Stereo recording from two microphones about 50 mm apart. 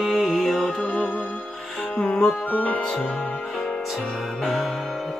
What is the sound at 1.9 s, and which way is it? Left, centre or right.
Music, left.